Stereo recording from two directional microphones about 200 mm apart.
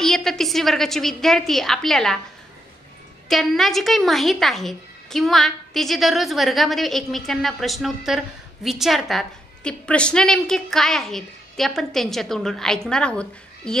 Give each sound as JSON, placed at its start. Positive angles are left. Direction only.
{"t": 0.0, "sound": "a woman's voice", "side_deg": 0}
{"t": 3.3, "sound": "a woman's voice", "side_deg": 0}